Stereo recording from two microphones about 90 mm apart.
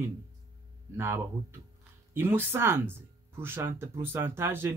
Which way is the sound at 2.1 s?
25° right (ahead or behind).